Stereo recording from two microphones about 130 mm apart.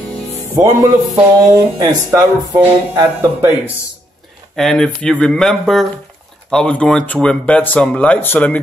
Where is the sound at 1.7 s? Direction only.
30° right (ahead or behind).